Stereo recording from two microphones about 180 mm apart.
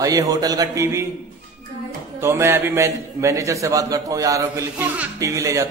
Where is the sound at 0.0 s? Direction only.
20° right (ahead or behind).